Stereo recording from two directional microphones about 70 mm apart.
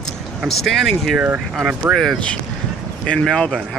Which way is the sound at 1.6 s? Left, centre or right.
Centre.